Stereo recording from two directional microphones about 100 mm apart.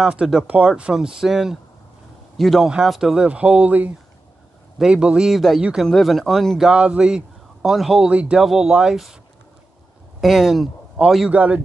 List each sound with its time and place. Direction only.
0.0 s a man's voice: 10° right (ahead or behind)
6.7 s a man's voice: 10° right (ahead or behind)
10.2 s speech: centre (ahead or behind)
11.3 s a man's voice: 15° right (ahead or behind)